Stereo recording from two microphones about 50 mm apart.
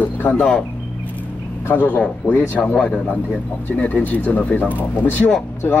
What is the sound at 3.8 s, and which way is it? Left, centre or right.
Speech, left.